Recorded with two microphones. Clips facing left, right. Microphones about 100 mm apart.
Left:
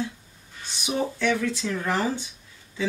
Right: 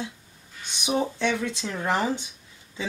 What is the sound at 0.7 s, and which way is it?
Speech, 20° right (ahead or behind).